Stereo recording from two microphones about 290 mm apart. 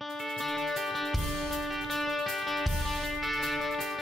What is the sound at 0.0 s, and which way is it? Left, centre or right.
Music, centre.